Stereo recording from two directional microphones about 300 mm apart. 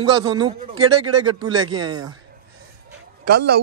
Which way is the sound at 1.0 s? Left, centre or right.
Right.